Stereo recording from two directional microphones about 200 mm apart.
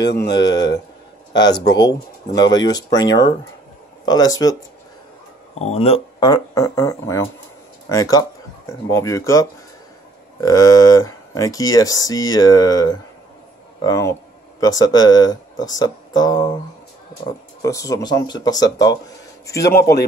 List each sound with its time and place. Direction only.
0.3 s speech: 20° left (ahead or behind)
5.5 s a man's voice: 35° left (ahead or behind); by 20.0 s 15° left (ahead or behind)